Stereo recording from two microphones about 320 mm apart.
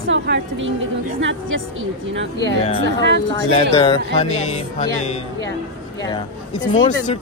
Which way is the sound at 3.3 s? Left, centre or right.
Centre.